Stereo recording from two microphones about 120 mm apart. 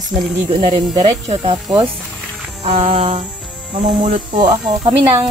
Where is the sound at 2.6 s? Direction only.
60° right (ahead or behind).